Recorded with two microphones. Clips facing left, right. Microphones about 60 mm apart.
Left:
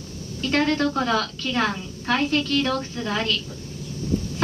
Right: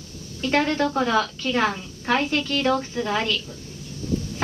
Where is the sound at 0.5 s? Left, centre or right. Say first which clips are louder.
Even; right.